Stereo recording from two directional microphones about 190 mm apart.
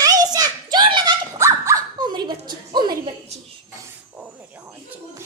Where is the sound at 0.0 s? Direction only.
20° right (ahead or behind).